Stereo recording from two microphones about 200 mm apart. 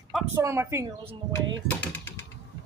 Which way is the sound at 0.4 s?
15° right (ahead or behind).